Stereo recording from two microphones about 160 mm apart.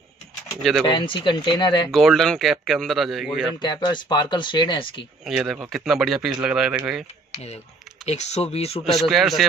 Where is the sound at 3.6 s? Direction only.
30° left (ahead or behind).